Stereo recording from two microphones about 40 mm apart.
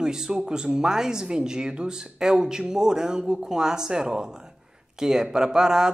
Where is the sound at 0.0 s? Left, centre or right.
Centre.